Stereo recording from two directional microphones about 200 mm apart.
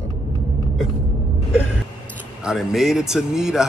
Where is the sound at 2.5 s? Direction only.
Centre (ahead or behind).